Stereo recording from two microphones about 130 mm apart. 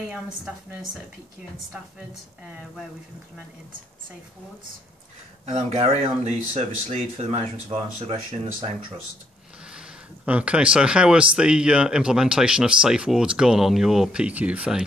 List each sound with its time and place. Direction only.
5.5 s speech: 50° right (ahead or behind)
9.8 s speech: 10° right (ahead or behind)